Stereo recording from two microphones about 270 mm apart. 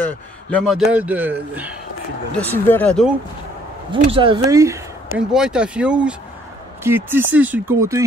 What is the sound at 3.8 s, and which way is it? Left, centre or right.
Speech, centre.